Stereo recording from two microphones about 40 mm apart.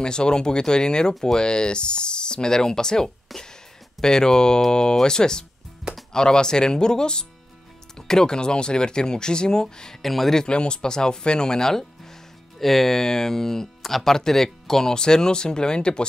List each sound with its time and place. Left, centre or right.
0.0 s speech: left
3.3 s speech: centre
4.0 s speech: centre
10.0 s speech: centre
10.3 s speech: left